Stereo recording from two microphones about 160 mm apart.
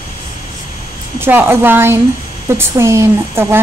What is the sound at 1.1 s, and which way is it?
Speech, 15° right (ahead or behind).